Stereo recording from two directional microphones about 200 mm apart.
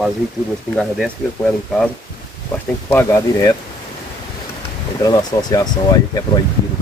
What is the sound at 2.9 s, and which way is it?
Speech, 15° left (ahead or behind).